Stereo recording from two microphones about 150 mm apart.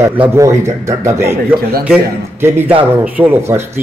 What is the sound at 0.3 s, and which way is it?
Speech, 20° right (ahead or behind).